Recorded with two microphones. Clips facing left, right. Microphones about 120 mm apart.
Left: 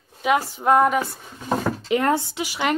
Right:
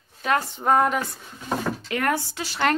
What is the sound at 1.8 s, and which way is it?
Speech, 25° left (ahead or behind).